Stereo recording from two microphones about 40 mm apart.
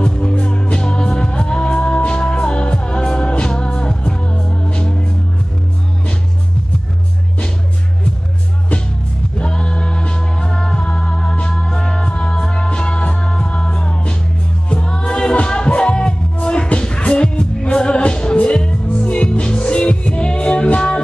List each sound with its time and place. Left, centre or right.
0.0 s music: left
9.4 s music: left